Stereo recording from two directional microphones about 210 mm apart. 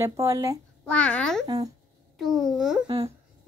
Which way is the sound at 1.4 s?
20° right (ahead or behind).